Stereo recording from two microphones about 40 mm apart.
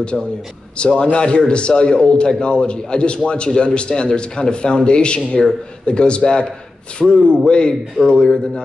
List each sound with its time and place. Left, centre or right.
0.1 s a man's voice: centre
0.7 s a man's voice: left